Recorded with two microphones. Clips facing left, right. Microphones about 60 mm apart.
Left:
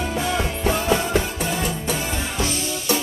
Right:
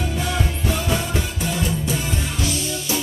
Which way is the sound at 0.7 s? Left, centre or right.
Left.